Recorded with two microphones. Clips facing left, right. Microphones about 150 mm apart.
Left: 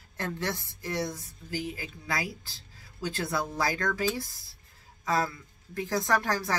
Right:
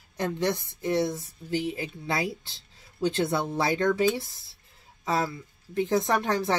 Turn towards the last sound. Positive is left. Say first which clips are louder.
# right 3 dB
turn(degrees=-25)  # may be behind; listen again after turning